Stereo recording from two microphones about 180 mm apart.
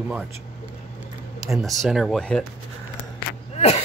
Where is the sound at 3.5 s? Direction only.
35° left (ahead or behind).